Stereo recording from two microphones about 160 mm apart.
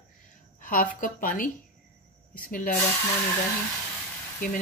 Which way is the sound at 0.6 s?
55° left (ahead or behind).